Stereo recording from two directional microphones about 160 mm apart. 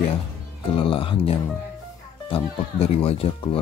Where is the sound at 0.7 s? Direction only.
35° left (ahead or behind).